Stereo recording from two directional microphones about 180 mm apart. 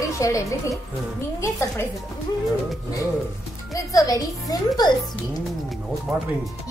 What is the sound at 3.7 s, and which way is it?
A woman's voice, 20° left (ahead or behind).